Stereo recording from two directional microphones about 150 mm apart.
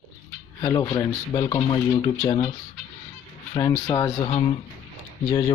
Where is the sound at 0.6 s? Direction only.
25° left (ahead or behind).